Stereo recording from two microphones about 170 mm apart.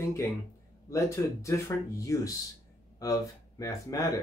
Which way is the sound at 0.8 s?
15° left (ahead or behind).